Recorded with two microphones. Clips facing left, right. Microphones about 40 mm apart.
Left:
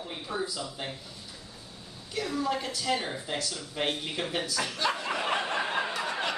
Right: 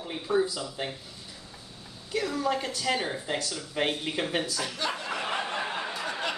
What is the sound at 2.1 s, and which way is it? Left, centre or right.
Speech, centre.